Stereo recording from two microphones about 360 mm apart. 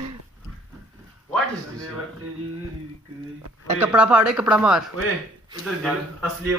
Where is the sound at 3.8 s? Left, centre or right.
Centre.